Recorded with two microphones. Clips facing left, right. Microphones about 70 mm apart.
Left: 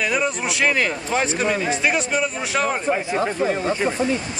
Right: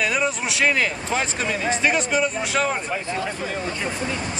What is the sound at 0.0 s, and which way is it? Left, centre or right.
Speech, centre.